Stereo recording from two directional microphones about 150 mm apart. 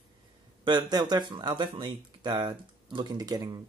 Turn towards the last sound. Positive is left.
turn(degrees=-25)  # may be behind; listen again after turning